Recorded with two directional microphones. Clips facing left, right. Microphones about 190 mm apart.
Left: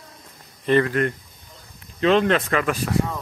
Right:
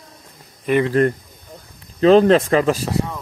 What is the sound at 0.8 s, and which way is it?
Speech, 35° right (ahead or behind).